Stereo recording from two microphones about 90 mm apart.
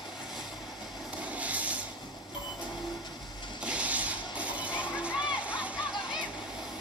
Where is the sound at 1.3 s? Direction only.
15° right (ahead or behind).